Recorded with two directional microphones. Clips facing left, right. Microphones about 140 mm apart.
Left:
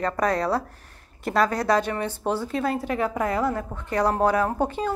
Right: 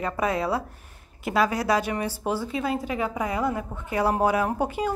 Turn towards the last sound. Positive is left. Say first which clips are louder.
# left 1 dB
turn(degrees=-10)  # may be behind; listen again after turning